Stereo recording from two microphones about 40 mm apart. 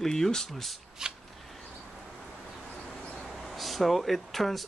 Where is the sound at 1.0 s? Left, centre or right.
Centre.